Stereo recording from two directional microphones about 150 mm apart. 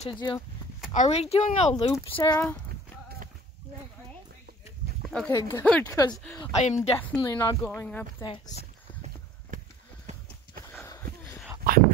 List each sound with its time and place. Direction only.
0.1 s speech: 30° left (ahead or behind)
0.9 s speech: 45° left (ahead or behind)
1.9 s speech: 35° left (ahead or behind)
2.3 s speech: 10° left (ahead or behind)
5.0 s a sound: 5° left (ahead or behind)
5.3 s speech: 25° left (ahead or behind)
5.6 s speech: 10° left (ahead or behind)
5.9 s speech: 25° left (ahead or behind)
6.6 s speech: 45° left (ahead or behind)
7.2 s speech: 25° left (ahead or behind)
7.7 s speech: 15° left (ahead or behind)
8.5 s a sound: 45° right (ahead or behind)
10.1 s horse: 50° right (ahead or behind)
11.7 s dog: 80° right